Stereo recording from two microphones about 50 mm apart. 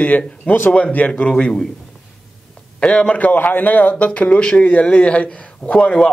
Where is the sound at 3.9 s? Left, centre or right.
Left.